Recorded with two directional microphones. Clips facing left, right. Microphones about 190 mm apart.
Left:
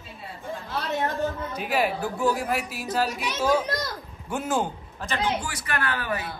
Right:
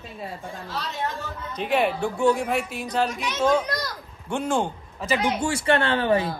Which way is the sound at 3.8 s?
5° left (ahead or behind).